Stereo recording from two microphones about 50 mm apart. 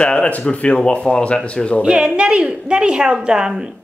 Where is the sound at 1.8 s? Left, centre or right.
Centre.